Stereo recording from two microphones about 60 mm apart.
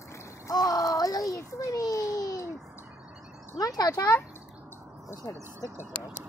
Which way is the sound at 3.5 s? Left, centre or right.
Left.